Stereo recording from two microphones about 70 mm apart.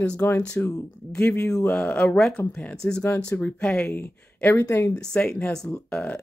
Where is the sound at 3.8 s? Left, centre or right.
Left.